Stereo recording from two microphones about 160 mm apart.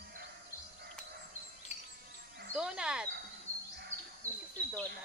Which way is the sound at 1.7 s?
45° left (ahead or behind).